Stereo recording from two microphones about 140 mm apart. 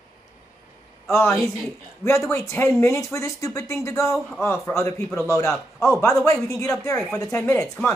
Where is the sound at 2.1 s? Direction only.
20° left (ahead or behind).